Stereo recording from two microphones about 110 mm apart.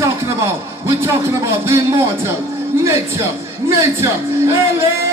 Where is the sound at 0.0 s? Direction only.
25° right (ahead or behind).